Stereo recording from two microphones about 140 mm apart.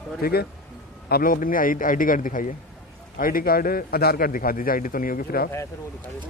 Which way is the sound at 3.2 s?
90° left.